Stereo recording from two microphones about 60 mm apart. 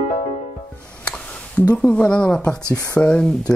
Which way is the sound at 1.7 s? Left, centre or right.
Centre.